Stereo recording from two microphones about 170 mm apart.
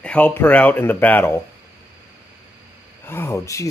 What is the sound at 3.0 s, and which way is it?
Speech, 15° left (ahead or behind).